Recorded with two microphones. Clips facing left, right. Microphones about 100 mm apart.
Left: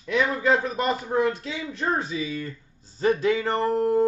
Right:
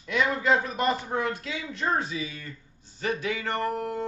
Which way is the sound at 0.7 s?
30° left (ahead or behind).